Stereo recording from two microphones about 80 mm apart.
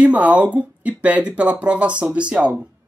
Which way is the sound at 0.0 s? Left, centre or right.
Centre.